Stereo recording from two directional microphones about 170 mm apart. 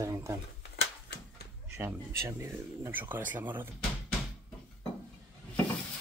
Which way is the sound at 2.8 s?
10° right (ahead or behind).